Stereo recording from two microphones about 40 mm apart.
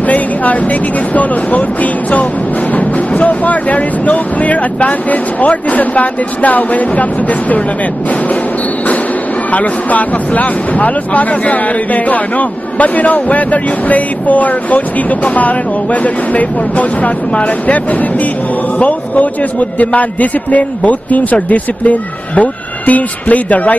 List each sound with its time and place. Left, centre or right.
0.0 s speech: left
9.5 s speech: left